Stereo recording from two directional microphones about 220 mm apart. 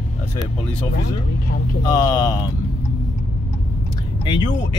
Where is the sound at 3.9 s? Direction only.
20° left (ahead or behind).